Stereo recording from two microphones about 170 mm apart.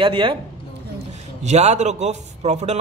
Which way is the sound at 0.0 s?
30° right (ahead or behind).